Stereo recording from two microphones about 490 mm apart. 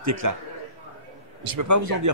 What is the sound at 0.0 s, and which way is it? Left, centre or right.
Speech, right.